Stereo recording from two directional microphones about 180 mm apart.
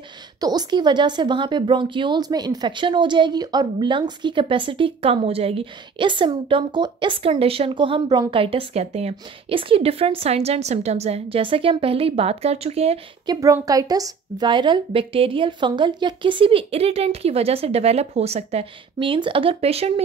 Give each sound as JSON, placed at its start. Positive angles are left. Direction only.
{"t": 0.4, "sound": "a woman's voice", "side_deg": -20}
{"t": 13.3, "sound": "speech", "side_deg": -20}